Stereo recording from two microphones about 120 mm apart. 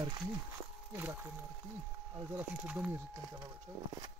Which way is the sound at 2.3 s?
10° right (ahead or behind).